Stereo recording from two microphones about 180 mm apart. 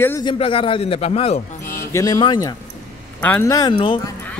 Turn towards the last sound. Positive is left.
turn(degrees=30)  # may be behind; listen again after turning